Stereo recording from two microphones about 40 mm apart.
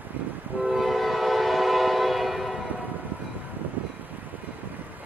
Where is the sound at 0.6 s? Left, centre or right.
Centre.